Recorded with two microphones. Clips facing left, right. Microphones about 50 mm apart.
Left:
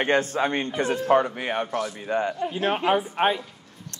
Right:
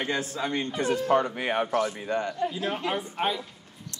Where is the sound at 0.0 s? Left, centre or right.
Left.